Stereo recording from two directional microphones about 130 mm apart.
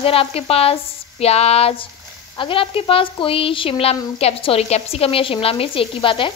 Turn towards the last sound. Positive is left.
turn(degrees=40)  # may be behind; listen again after turning